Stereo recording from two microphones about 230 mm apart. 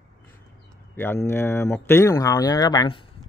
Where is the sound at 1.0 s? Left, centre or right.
Centre.